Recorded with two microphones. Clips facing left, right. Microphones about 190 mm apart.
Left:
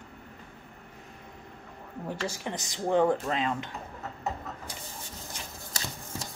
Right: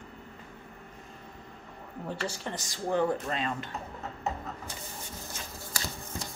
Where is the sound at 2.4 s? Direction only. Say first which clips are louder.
Left 2 dB; 20° left (ahead or behind).